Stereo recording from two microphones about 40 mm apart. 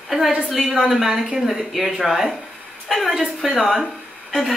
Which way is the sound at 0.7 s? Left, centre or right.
Centre.